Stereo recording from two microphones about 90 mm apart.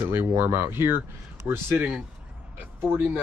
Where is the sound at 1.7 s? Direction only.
15° right (ahead or behind).